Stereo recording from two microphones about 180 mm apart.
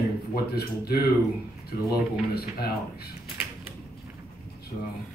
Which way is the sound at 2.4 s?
60° left (ahead or behind).